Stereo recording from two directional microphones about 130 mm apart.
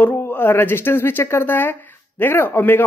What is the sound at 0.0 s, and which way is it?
Speech, 15° left (ahead or behind).